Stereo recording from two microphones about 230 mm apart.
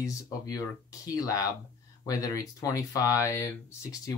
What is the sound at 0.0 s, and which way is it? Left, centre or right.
Speech, centre.